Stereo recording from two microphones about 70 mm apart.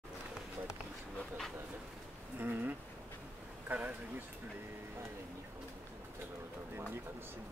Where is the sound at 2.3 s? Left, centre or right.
Right.